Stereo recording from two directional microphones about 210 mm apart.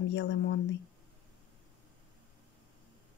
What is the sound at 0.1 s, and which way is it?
Speech, 60° left (ahead or behind).